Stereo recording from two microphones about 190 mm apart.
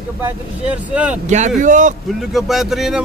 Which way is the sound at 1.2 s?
40° right (ahead or behind).